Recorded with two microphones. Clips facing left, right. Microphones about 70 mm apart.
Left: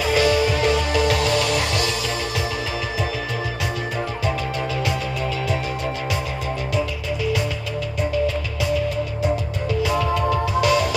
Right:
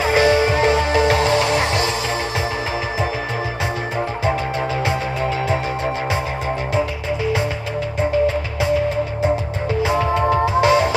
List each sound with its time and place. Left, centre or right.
0.0 s music: right
4.8 s music: right
8.0 s music: right